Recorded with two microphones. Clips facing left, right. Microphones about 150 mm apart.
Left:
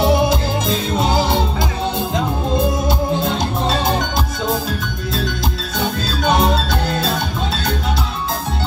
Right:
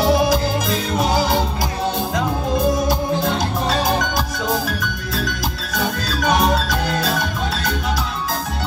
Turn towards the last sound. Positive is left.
turn(degrees=25)  # may be behind; listen again after turning